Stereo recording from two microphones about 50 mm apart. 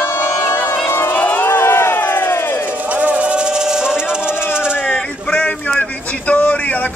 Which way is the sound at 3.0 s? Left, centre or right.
Right.